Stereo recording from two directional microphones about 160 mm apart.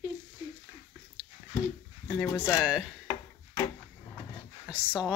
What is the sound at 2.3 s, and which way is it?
Speech, 20° left (ahead or behind).